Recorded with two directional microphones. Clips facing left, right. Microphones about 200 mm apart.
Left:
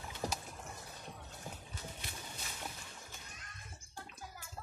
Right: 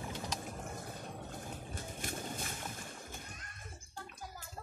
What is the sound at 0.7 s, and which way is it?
Vehicle, 50° right (ahead or behind).